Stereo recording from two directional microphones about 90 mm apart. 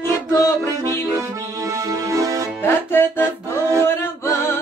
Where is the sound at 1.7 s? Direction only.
40° right (ahead or behind).